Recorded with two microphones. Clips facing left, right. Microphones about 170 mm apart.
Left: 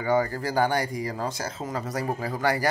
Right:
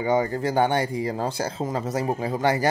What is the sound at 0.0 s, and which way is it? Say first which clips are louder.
A man's voice: right 2 dB; 20° right (ahead or behind).